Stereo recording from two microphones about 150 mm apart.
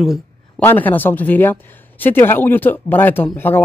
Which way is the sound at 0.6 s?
10° left (ahead or behind).